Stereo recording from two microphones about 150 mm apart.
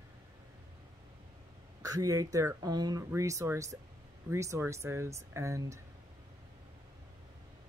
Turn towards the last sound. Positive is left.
turn(degrees=-20)  # may be behind; listen again after turning